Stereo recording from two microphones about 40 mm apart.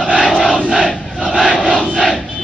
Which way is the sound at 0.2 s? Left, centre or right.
Centre.